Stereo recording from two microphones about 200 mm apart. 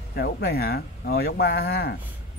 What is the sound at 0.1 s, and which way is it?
Speech, 50° left (ahead or behind).